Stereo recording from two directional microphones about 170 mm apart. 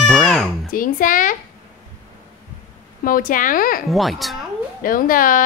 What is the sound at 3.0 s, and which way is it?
Speech, 55° left (ahead or behind).